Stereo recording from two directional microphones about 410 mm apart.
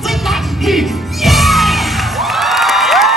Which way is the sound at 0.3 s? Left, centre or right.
Centre.